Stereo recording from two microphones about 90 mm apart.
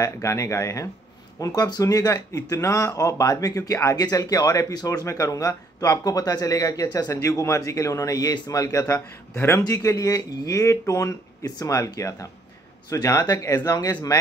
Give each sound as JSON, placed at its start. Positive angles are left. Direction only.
{"t": 0.0, "sound": "speech", "side_deg": 35}